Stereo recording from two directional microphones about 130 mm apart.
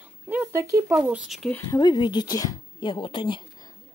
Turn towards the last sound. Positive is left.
turn(degrees=40)  # may be behind; listen again after turning